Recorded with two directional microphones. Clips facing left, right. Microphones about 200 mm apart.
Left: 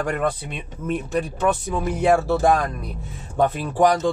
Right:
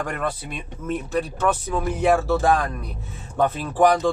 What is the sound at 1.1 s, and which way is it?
Speech, 15° left (ahead or behind).